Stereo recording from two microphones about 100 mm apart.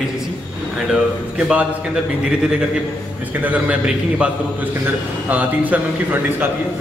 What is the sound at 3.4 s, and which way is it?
Speech, 15° right (ahead or behind).